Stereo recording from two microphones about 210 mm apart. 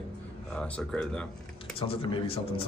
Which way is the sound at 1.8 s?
25° left (ahead or behind).